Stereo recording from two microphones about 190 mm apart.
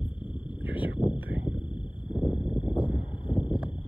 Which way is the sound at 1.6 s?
25° left (ahead or behind).